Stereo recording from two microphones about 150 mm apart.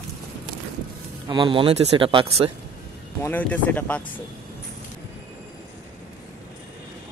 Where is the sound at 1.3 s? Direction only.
30° right (ahead or behind).